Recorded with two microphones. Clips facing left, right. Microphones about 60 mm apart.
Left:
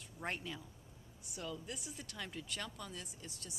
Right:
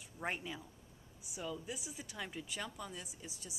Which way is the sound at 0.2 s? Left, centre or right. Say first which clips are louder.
Right 2 dB; centre.